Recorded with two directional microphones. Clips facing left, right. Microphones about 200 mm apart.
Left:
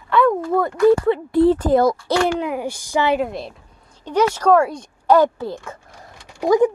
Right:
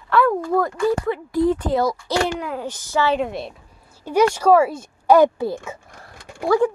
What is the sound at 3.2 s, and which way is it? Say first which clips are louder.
Speech: left 1 dB; centre (ahead or behind).